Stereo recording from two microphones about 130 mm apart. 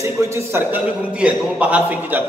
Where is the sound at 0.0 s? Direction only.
20° right (ahead or behind).